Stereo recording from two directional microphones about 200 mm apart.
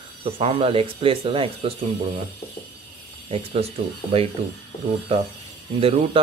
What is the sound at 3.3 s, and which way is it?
Speech, 30° right (ahead or behind).